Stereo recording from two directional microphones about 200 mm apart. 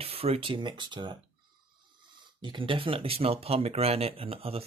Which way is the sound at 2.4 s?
25° right (ahead or behind).